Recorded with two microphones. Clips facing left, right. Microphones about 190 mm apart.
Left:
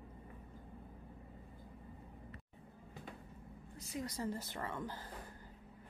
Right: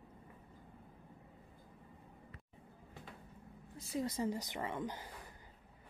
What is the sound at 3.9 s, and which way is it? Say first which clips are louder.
Speech: right 4 dB; 25° right (ahead or behind).